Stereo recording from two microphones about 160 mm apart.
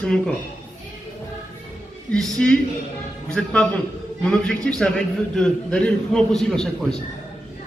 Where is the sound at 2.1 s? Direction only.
5° left (ahead or behind).